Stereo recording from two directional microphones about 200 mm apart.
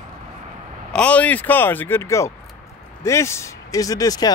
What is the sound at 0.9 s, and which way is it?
Speech, 5° left (ahead or behind).